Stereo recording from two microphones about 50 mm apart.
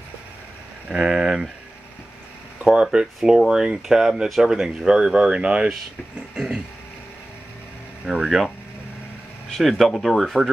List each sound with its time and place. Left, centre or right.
0.9 s speech: centre
2.7 s speech: centre
8.0 s speech: centre
9.6 s speech: centre